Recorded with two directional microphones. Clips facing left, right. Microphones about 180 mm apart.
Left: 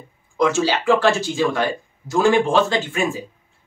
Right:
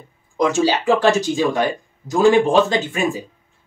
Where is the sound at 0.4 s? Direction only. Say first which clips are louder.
Right 1 dB; 15° right (ahead or behind).